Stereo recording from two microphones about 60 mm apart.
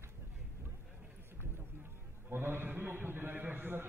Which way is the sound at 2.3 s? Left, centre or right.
Right.